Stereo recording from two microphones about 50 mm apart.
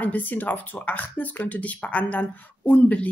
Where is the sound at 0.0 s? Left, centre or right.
Left.